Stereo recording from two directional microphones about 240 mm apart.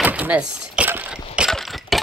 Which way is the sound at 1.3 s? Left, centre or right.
Centre.